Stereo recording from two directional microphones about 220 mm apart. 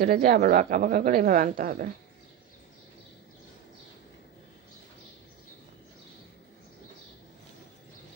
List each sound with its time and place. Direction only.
0.0 s a woman's voice: 40° right (ahead or behind)